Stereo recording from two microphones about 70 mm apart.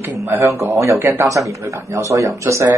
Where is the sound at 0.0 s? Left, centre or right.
Right.